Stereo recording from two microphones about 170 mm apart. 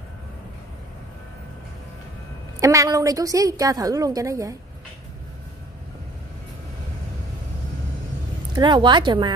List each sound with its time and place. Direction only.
2.6 s a woman's voice: 20° right (ahead or behind)
8.5 s a woman's voice: 25° right (ahead or behind)